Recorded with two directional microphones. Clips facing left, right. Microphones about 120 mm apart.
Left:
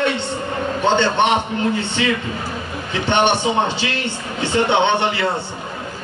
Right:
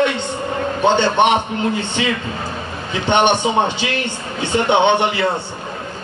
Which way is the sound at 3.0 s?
20° right (ahead or behind).